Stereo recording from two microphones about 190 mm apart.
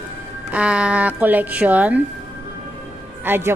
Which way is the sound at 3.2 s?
10° right (ahead or behind).